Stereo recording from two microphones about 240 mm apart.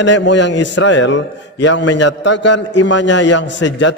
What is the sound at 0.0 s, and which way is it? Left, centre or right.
A man's voice, left.